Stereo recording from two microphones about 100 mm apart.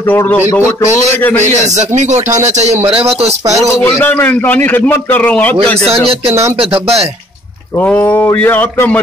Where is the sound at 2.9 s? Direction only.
85° right.